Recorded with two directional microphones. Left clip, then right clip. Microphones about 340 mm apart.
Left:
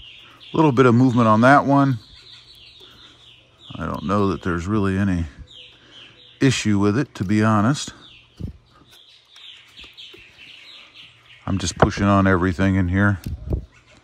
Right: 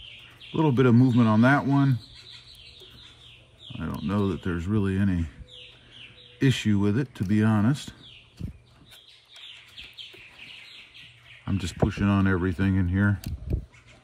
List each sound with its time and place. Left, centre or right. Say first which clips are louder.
0.6 s speech: left 7 dB; centre
3.7 s speech: left 8 dB; centre
6.4 s speech: left 6 dB; centre
11.4 s speech: left 10 dB; centre